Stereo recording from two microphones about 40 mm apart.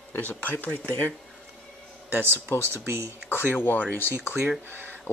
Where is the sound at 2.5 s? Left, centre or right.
Left.